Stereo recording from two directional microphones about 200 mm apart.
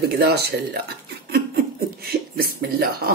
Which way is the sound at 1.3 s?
50° right (ahead or behind).